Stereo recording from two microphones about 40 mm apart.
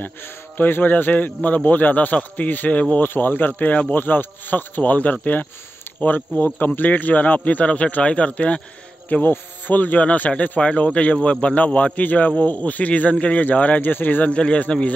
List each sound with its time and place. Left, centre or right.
0.6 s a man's voice: left
3.0 s a man's voice: left
9.2 s a man's voice: left
14.3 s speech: left